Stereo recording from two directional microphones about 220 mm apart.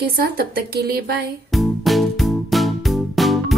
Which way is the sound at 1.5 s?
Centre (ahead or behind).